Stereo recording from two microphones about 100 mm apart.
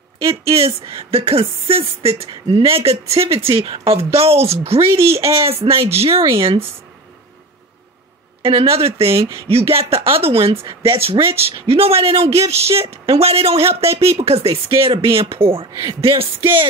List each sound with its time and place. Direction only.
0.3 s speech: 75° right (ahead or behind)
3.6 s speech: 50° right (ahead or behind)
3.9 s speech: 75° right (ahead or behind); by 6.6 s 55° right (ahead or behind)
8.4 s speech: 65° right (ahead or behind); by 12.8 s 90° right
12.8 s a woman's voice: 30° right (ahead or behind)
13.1 s speech: 75° right (ahead or behind)
14.1 s speech: 90° right
14.5 s speech: 60° right (ahead or behind)
15.7 s speech: 45° right (ahead or behind)